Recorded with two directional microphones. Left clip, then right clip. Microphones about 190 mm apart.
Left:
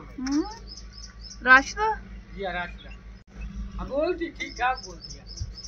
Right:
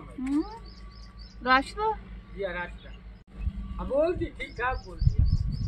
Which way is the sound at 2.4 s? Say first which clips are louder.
Left 2 dB; 55° left (ahead or behind).